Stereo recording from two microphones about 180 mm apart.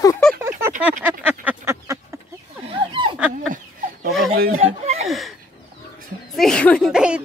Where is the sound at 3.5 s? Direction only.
50° right (ahead or behind).